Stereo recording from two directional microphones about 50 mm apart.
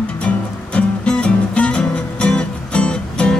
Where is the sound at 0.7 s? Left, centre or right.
Left.